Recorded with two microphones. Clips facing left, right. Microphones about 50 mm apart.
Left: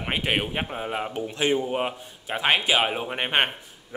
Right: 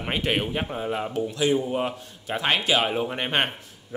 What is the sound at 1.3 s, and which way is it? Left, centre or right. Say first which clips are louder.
A man's voice: even; left.